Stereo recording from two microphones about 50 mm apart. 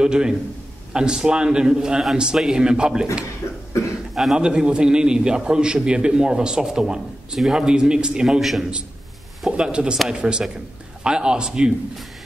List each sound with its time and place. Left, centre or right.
0.0 s a man's voice: centre
3.4 s cough: left
4.1 s a sound: centre
4.4 s a man's voice: centre
8.4 s a man's voice: centre
9.6 s a man's voice: centre